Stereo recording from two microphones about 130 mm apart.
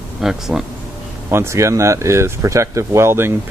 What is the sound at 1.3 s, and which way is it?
Speech, 20° right (ahead or behind).